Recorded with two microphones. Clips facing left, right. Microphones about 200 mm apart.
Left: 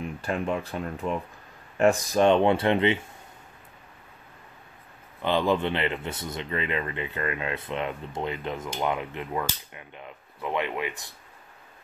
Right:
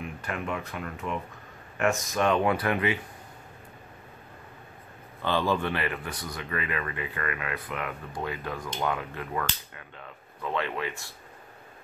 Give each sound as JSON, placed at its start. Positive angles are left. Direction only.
{"t": 0.0, "sound": "speech", "side_deg": 30}
{"t": 5.2, "sound": "speech", "side_deg": 20}